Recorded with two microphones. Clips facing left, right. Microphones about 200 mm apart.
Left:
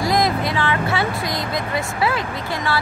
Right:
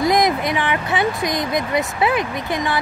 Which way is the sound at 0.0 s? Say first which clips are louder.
Right 2 dB; 20° right (ahead or behind).